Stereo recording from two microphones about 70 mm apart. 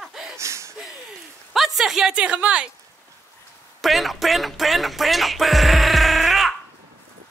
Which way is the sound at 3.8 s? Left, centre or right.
Centre.